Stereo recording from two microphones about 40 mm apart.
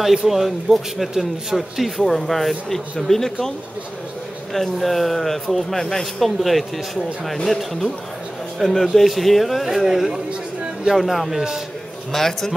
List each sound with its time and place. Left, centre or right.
0.0 s speech: centre
2.1 s speech: centre
4.6 s speech: centre
10.1 s a sound: centre
11.0 s speech: centre
12.1 s speech: centre